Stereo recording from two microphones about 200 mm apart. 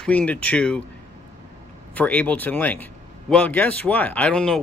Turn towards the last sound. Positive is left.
turn(degrees=5)  # may be behind; listen again after turning